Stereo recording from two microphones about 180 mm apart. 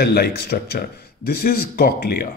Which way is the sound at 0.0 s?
60° left (ahead or behind).